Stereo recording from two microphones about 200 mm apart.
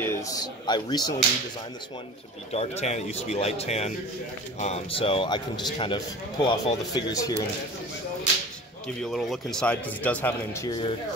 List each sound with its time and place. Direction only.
0.0 s a man's voice: 15° left (ahead or behind)
2.5 s speech: 30° left (ahead or behind); by 7.4 s 15° left (ahead or behind)
8.8 s speech: centre (ahead or behind)